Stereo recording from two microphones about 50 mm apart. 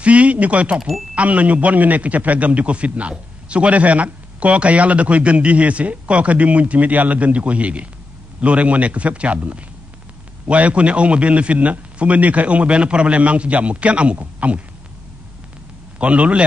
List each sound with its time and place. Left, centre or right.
0.0 s a man's voice: right
16.0 s a man's voice: right